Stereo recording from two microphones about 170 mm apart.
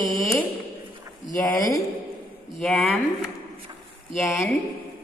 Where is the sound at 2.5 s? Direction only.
5° left (ahead or behind).